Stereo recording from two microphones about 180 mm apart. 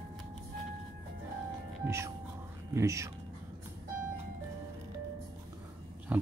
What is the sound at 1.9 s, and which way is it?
Speech, 15° right (ahead or behind).